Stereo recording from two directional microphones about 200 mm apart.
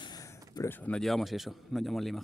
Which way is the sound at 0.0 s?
20° left (ahead or behind).